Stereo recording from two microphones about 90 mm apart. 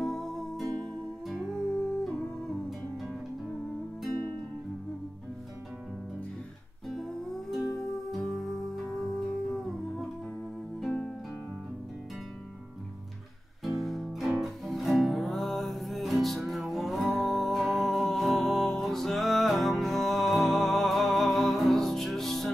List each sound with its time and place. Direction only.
0.0 s music: 5° left (ahead or behind)
7.0 s music: 5° left (ahead or behind)
13.7 s music: centre (ahead or behind)